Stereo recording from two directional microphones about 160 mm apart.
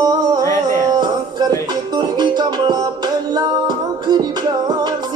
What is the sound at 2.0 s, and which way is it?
Music, 25° right (ahead or behind).